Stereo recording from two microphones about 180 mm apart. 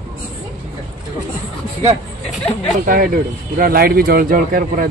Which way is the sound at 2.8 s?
55° right (ahead or behind).